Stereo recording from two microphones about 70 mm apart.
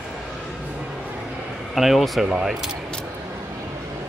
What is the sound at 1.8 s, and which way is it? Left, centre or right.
Speech, centre.